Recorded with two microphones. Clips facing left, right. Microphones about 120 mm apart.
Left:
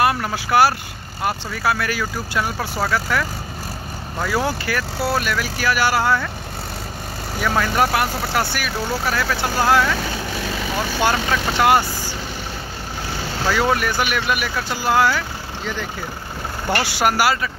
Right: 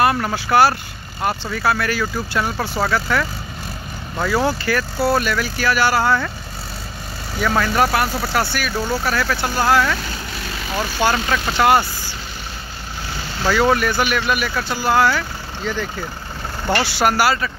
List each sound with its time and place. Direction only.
0.0 s speech: 5° left (ahead or behind)
7.4 s speech: 5° left (ahead or behind)
11.1 s speech: 15° left (ahead or behind)
13.5 s speech: 5° left (ahead or behind)